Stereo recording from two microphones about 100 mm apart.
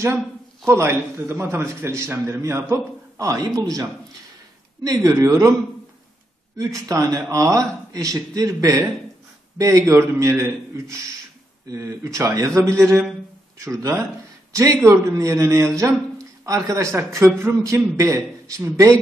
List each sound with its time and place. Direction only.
0.7 s a man's voice: 25° right (ahead or behind)
4.8 s a man's voice: 35° right (ahead or behind)
6.5 s a man's voice: 35° right (ahead or behind)